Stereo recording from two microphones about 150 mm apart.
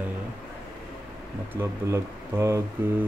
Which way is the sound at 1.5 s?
15° right (ahead or behind).